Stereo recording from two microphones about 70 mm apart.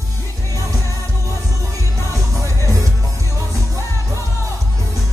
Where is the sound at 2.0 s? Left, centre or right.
Right.